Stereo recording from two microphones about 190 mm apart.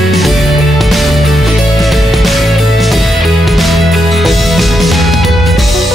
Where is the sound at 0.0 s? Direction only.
Centre (ahead or behind).